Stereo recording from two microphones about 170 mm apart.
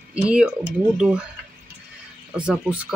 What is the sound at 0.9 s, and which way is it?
Speech, 5° right (ahead or behind).